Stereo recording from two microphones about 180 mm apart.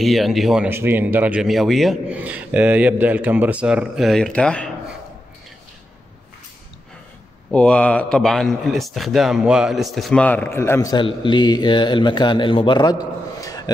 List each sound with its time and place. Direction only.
0.0 s speech: centre (ahead or behind)
0.7 s a man's voice: 10° right (ahead or behind); by 4.6 s 5° left (ahead or behind)
7.5 s speech: 5° left (ahead or behind); by 12.9 s 25° left (ahead or behind)
13.4 s a sound: 20° left (ahead or behind)